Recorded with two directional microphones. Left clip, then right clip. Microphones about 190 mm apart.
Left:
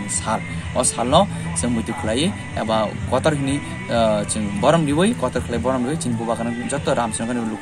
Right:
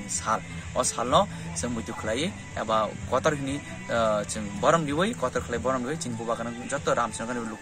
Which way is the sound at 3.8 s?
5° right (ahead or behind).